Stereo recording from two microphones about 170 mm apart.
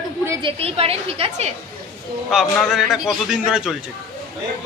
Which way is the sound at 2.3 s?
Centre (ahead or behind).